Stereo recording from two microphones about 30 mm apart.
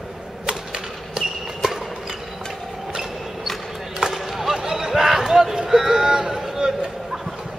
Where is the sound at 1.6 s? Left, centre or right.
Centre.